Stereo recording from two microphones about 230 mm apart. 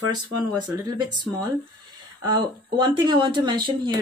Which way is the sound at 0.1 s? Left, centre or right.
Centre.